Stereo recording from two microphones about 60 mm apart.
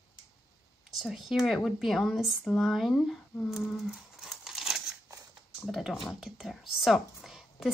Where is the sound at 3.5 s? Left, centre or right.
Centre.